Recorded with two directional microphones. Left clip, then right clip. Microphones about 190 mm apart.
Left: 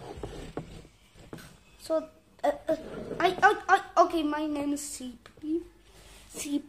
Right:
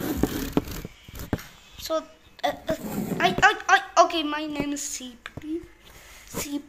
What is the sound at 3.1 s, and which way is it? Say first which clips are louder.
A woman's voice: right 3 dB; 15° left (ahead or behind).